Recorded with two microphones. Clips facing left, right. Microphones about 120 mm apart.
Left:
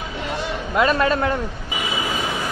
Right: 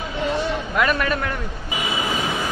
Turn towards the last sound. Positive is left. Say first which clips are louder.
# left 3 dB
turn(degrees=25)  # may be behind; listen again after turning